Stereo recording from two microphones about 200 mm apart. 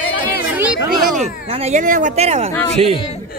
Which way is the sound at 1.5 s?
35° right (ahead or behind).